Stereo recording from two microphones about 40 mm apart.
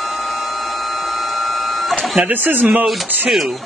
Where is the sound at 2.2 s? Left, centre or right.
Right.